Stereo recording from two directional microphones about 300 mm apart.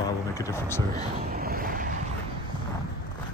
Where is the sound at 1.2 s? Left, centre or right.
Right.